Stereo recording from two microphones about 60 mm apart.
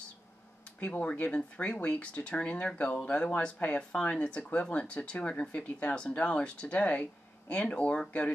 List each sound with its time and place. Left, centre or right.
0.7 s speech: left